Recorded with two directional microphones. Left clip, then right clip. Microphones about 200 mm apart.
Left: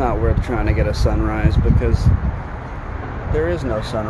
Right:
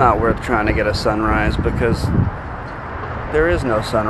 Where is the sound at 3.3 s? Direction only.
15° right (ahead or behind).